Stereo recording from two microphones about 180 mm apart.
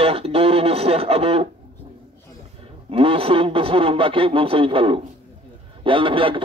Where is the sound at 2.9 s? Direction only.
30° right (ahead or behind).